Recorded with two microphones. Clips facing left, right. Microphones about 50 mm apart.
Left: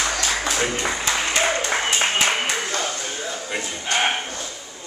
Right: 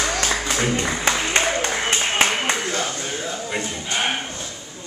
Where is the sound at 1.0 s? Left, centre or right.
Right.